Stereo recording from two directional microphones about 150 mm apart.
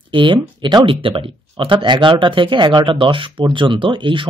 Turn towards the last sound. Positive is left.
turn(degrees=-35)  # may be behind; listen again after turning